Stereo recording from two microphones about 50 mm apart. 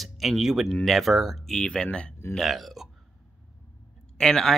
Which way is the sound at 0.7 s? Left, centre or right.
Centre.